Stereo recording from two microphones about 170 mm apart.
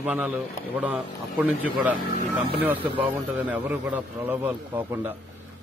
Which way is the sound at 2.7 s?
30° right (ahead or behind).